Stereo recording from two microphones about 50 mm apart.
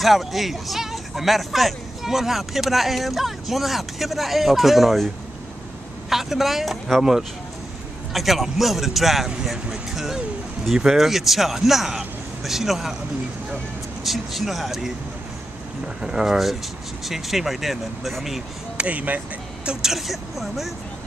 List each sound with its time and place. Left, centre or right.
0.0 s speech: centre
14.0 s speech: centre
16.0 s speech: centre
18.8 s speech: right
19.6 s speech: centre
19.9 s speech: centre